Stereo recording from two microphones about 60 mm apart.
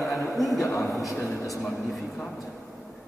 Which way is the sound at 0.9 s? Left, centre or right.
Centre.